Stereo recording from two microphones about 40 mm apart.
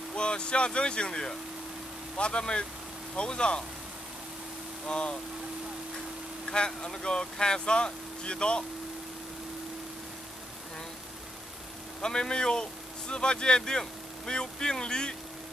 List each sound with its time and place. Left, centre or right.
0.1 s speech: left
4.8 s speech: left
6.5 s speech: left
12.0 s speech: centre